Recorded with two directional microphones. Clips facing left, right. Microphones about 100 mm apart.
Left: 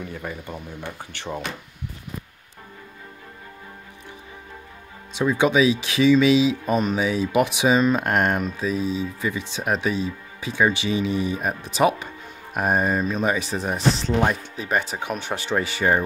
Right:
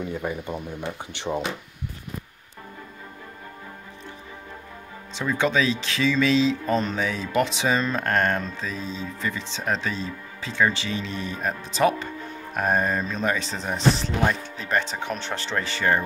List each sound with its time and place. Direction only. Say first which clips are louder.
0.0 s speech: right 4 dB; 20° right (ahead or behind)
5.1 s speech: left 4 dB; 15° left (ahead or behind)